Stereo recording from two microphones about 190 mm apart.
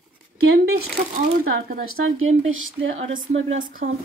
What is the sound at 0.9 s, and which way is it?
Speech, 50° right (ahead or behind).